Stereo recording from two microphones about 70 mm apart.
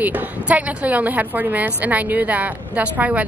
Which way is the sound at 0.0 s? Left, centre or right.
Right.